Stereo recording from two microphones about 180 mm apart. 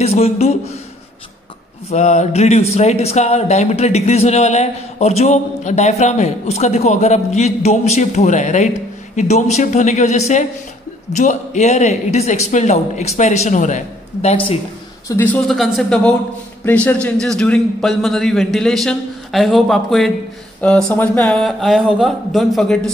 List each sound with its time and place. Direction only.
0.0 s speech: 35° left (ahead or behind)
1.9 s speech: 40° left (ahead or behind)
15.0 s a man's voice: 10° left (ahead or behind)